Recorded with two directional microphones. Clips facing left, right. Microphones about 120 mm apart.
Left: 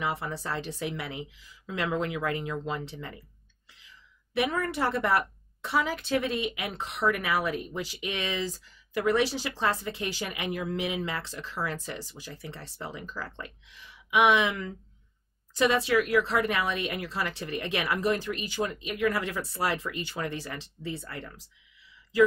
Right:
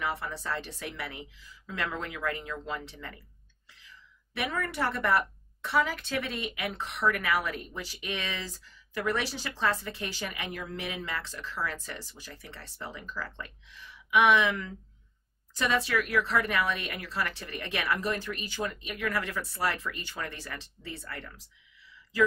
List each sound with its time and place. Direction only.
0.0 s a woman's voice: 20° left (ahead or behind)
4.4 s a woman's voice: 20° left (ahead or behind)